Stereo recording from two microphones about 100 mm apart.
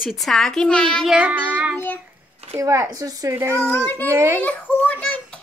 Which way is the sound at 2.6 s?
30° right (ahead or behind).